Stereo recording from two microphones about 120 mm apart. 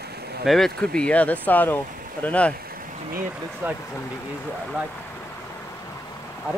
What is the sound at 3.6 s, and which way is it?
Speech, 15° right (ahead or behind).